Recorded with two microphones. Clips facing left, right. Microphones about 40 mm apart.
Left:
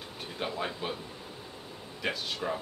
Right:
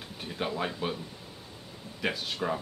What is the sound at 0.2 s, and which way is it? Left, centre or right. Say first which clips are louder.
Speech: right 2 dB; centre.